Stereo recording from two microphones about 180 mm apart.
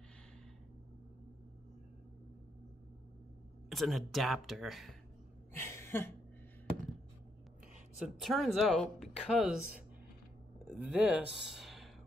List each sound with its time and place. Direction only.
3.6 s speech: centre (ahead or behind)
5.6 s a sound: 15° left (ahead or behind)
8.2 s speech: centre (ahead or behind)